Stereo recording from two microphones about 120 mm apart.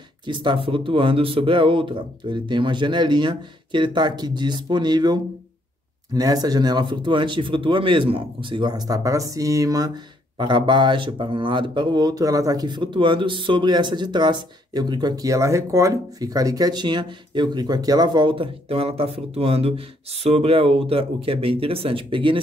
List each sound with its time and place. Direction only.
0.3 s speech: 45° right (ahead or behind)